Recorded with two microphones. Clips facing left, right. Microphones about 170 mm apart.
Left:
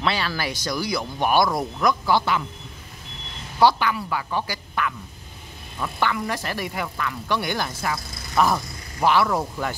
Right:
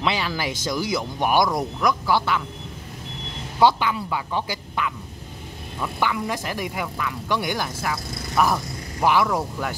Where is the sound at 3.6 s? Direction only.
20° right (ahead or behind).